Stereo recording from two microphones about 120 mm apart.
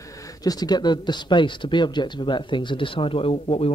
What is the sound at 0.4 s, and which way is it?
Speech, 35° left (ahead or behind).